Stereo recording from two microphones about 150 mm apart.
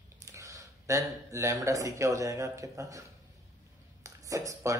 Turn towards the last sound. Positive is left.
turn(degrees=-20)  # may be behind; listen again after turning